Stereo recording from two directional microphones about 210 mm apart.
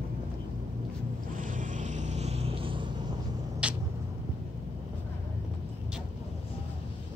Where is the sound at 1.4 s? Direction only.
40° right (ahead or behind).